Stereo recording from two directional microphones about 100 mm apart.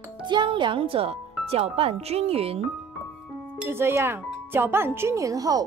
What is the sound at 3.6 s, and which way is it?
Speech, 25° right (ahead or behind).